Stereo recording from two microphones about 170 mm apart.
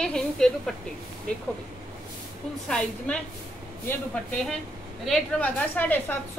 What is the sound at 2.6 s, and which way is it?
A woman's voice, 5° left (ahead or behind).